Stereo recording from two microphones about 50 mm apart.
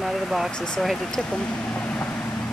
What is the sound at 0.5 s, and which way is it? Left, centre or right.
Speech, centre.